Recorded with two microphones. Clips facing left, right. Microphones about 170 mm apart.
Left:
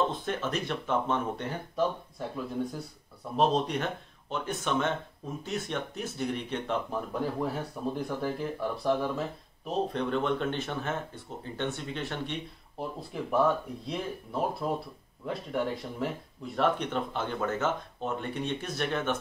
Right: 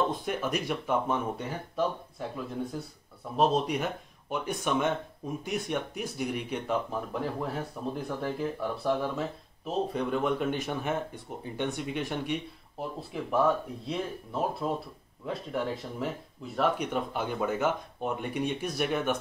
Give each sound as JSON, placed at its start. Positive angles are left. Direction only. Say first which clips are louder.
{"t": 0.2, "sound": "speech", "louder": "right 1 dB", "side_deg": -10}
{"t": 12.7, "sound": "speech", "louder": "even", "side_deg": 0}